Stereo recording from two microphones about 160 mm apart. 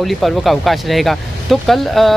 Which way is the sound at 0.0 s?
Centre (ahead or behind).